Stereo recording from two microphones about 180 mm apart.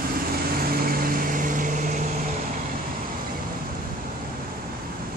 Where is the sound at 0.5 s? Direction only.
55° right (ahead or behind).